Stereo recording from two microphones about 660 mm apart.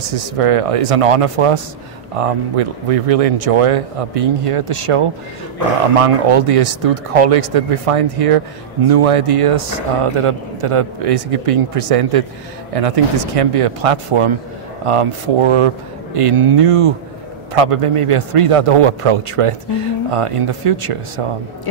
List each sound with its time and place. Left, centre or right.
0.1 s a man's voice: right